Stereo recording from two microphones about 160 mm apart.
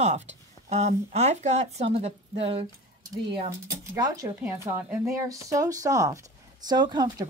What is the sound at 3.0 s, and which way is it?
Speech, 30° right (ahead or behind).